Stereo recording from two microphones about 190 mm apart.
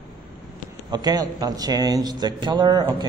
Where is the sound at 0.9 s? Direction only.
20° right (ahead or behind).